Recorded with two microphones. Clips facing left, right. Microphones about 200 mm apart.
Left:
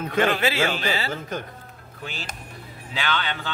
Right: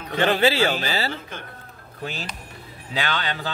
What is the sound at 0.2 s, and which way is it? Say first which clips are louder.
Speech: right 3 dB; 30° right (ahead or behind).